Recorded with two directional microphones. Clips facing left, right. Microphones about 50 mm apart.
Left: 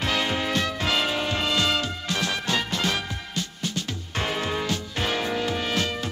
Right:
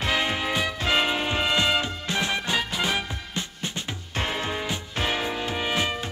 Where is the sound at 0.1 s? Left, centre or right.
Centre.